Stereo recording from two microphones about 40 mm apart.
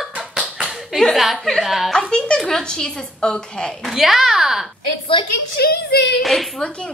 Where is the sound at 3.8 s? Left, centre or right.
Centre.